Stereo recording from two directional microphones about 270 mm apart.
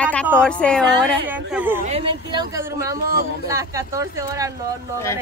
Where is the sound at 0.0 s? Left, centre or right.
Centre.